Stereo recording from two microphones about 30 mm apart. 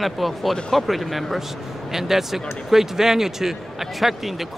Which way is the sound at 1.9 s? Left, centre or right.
Centre.